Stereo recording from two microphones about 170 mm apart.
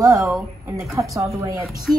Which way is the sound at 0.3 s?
20° right (ahead or behind).